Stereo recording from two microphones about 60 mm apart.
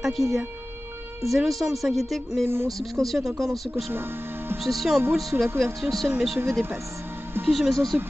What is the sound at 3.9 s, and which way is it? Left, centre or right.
Speech, right.